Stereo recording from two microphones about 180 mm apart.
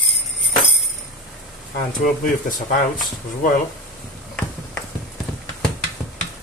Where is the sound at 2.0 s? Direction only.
50° left (ahead or behind).